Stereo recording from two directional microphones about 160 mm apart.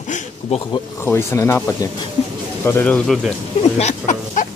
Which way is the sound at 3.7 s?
45° left (ahead or behind).